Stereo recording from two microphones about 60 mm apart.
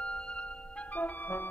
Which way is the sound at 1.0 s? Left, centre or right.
Left.